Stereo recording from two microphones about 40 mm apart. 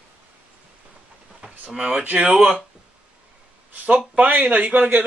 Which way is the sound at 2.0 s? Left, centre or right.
Right.